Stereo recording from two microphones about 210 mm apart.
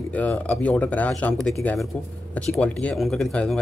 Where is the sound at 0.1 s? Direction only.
5° left (ahead or behind).